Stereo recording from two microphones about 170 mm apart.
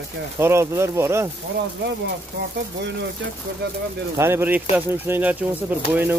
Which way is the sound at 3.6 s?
75° right (ahead or behind).